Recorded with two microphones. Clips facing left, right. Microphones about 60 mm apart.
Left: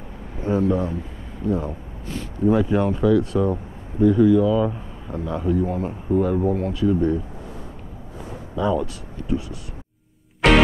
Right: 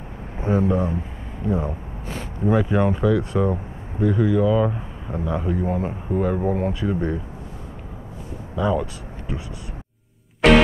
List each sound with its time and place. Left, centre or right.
0.4 s a man's voice: right
6.5 s speech: right
8.5 s a man's voice: centre
9.3 s speech: right
10.4 s music: centre